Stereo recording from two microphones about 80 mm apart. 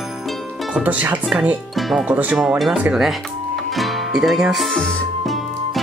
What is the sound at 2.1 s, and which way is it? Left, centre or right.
Speech, centre.